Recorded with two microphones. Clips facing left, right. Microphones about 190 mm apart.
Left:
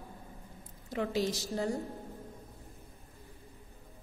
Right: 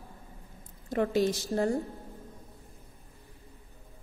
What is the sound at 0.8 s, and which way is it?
Speech, 50° right (ahead or behind).